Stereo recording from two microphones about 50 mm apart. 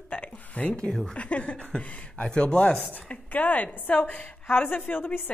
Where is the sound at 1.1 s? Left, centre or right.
Left.